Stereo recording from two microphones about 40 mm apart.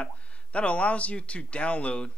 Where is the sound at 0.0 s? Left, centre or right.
Left.